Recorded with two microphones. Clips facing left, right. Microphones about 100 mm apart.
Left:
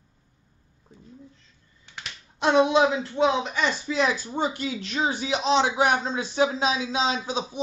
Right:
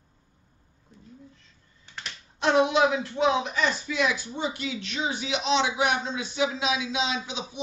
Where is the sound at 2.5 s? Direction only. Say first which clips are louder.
Left 2 dB; 25° left (ahead or behind).